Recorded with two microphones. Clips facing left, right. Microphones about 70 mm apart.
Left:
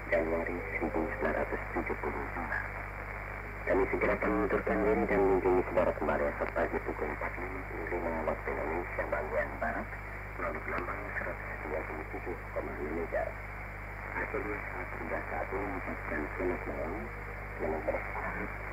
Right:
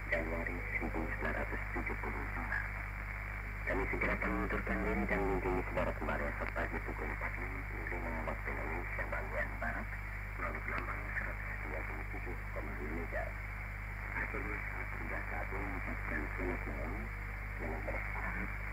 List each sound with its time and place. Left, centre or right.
0.1 s hum: left
3.6 s speech: left
14.1 s speech: left